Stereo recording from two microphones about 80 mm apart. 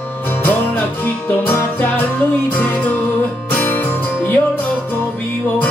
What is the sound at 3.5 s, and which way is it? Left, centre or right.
Music, left.